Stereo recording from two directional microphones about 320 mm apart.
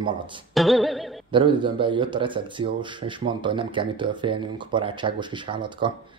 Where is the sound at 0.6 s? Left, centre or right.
Centre.